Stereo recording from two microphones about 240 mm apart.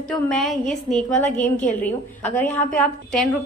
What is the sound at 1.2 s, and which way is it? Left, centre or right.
Speech, left.